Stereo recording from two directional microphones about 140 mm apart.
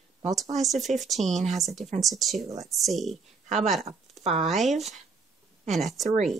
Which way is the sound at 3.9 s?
50° right (ahead or behind).